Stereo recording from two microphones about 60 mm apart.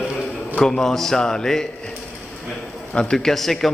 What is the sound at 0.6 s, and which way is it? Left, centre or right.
A man's voice, centre.